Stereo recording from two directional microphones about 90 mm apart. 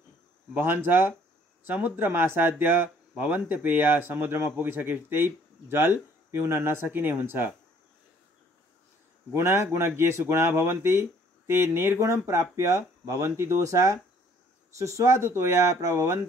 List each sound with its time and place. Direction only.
0.6 s speech: 25° right (ahead or behind)
9.3 s speech: 30° right (ahead or behind)